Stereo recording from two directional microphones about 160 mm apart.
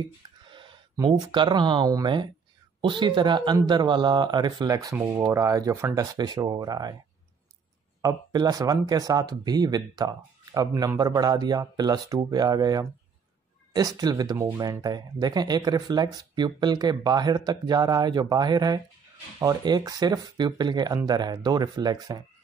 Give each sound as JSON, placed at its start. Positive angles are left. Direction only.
{"t": 0.5, "sound": "speech", "side_deg": -30}
{"t": 8.0, "sound": "speech", "side_deg": -25}